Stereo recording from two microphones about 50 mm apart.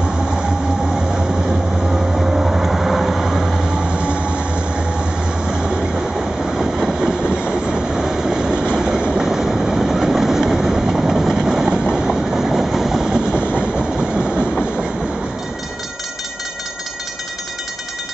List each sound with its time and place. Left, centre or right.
1.9 s vehicle: centre
3.6 s vehicle: centre
6.1 s train: centre